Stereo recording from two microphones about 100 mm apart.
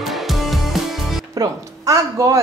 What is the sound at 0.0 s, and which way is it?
Music, centre (ahead or behind).